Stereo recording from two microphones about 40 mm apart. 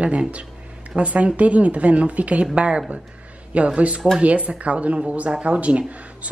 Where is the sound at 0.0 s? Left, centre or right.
Right.